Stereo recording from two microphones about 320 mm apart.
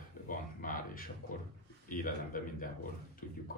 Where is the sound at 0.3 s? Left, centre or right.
Left.